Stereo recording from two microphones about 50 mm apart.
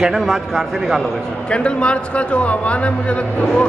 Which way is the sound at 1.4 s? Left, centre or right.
Left.